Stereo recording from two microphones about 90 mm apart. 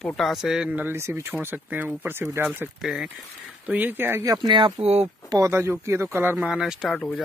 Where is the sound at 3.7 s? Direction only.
20° right (ahead or behind).